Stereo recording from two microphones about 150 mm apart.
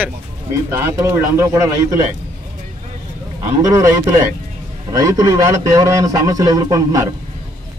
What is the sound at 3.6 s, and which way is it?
A man's voice, 20° right (ahead or behind).